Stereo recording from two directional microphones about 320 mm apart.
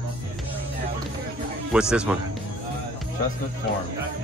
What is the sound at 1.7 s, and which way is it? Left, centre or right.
Speech, centre.